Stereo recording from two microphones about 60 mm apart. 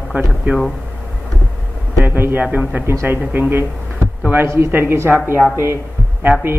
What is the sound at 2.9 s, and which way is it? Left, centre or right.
Speech, right.